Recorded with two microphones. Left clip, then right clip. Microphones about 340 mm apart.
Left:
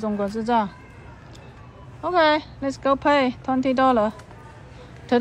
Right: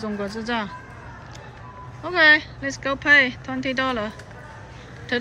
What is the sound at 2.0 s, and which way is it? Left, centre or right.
A woman's voice, centre.